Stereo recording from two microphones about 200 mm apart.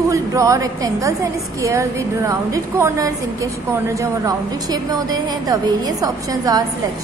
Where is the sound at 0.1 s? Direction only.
15° right (ahead or behind).